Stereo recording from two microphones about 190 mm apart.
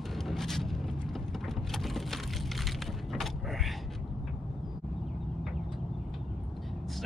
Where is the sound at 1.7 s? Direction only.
Centre (ahead or behind).